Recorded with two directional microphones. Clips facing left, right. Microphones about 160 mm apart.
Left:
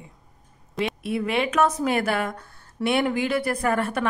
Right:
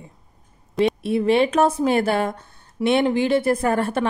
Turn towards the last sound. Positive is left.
turn(degrees=-30)  # may be behind; listen again after turning